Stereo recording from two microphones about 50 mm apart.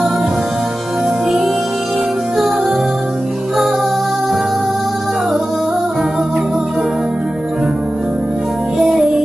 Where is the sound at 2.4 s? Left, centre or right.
Centre.